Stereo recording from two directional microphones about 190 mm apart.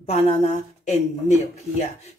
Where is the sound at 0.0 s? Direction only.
35° left (ahead or behind).